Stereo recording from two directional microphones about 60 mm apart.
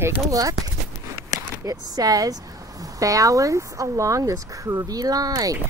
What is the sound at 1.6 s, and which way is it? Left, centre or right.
Speech, right.